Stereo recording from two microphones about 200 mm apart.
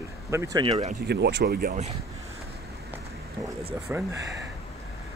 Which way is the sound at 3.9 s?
10° right (ahead or behind).